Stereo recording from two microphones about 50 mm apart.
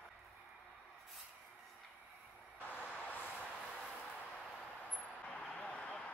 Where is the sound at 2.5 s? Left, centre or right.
Left.